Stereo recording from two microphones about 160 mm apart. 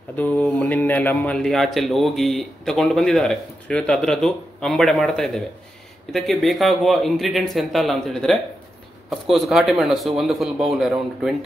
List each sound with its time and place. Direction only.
0.1 s speech: 10° left (ahead or behind)